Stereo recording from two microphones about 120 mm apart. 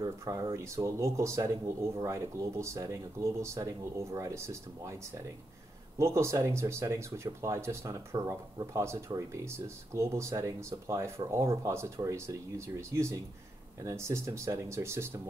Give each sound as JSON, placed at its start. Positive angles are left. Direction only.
{"t": 0.0, "sound": "speech", "side_deg": -30}
{"t": 5.9, "sound": "speech", "side_deg": -25}